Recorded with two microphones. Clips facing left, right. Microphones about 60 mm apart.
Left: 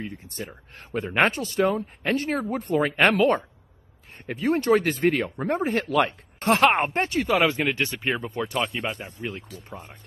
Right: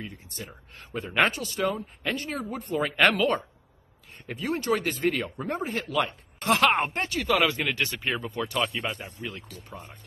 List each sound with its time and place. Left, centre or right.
0.0 s speech: left
0.7 s speech: left
1.1 s speech: left
3.2 s speech: left
6.4 s speech: left
7.2 s speech: centre